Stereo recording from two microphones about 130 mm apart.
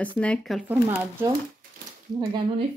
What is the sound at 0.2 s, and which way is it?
Speech, 10° left (ahead or behind).